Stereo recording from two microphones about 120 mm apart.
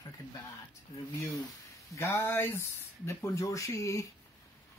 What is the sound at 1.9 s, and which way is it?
Speech, 25° left (ahead or behind).